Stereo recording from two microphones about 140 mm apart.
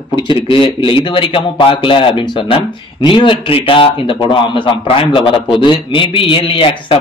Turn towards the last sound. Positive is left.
turn(degrees=40)  # may be behind; listen again after turning